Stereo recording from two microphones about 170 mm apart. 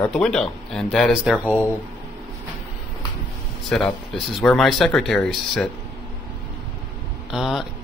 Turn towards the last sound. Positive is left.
turn(degrees=-5)  # may be behind; listen again after turning